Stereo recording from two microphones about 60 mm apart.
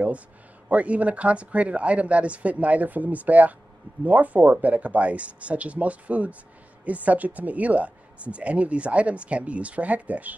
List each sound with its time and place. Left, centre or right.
0.7 s speech: right